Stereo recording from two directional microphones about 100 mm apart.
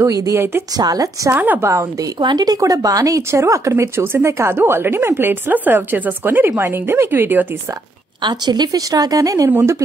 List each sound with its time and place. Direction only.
0.0 s speech: 35° right (ahead or behind)
1.3 s speech: 20° right (ahead or behind)
2.1 s speech: 45° right (ahead or behind); by 7.4 s 20° right (ahead or behind)
8.2 s speech: 50° right (ahead or behind)
9.5 s speech: 25° right (ahead or behind)